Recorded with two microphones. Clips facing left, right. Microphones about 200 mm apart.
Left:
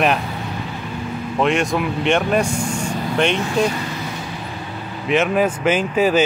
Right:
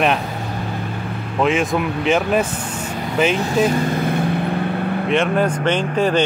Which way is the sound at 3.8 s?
55° right (ahead or behind).